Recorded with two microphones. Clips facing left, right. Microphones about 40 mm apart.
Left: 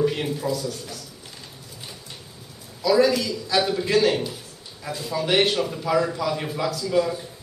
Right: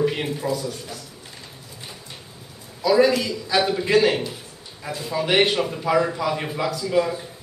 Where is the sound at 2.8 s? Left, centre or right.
Centre.